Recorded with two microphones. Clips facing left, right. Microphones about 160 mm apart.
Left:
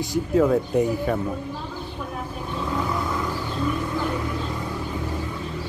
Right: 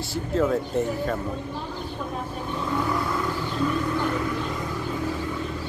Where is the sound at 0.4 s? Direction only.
5° left (ahead or behind).